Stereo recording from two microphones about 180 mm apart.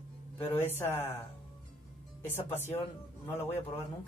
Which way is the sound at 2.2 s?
10° left (ahead or behind).